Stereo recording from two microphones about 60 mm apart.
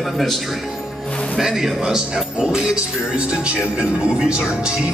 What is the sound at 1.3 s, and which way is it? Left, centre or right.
Speech, centre.